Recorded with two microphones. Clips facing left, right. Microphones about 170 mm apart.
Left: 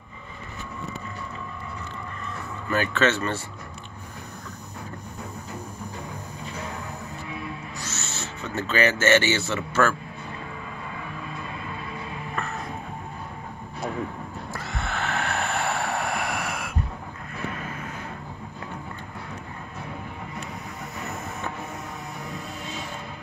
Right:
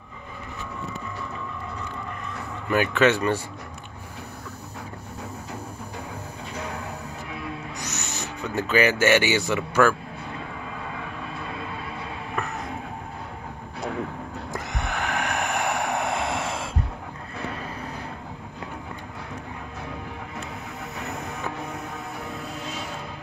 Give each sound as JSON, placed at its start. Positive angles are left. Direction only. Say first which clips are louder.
{"t": 2.7, "sound": "speech", "louder": "right 3 dB", "side_deg": -15}
{"t": 7.7, "sound": "speech", "louder": "right 2 dB", "side_deg": -15}
{"t": 14.5, "sound": "music", "louder": "right 1 dB", "side_deg": -20}